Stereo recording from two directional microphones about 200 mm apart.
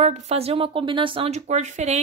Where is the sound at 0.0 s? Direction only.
35° right (ahead or behind).